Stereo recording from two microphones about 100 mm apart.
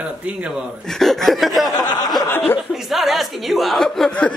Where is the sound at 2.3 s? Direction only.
20° left (ahead or behind).